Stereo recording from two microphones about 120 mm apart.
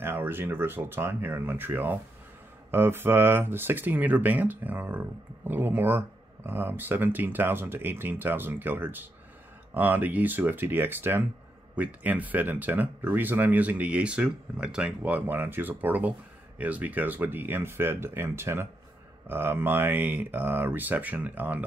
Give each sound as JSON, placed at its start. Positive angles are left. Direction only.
{"t": 0.0, "sound": "speech", "side_deg": -20}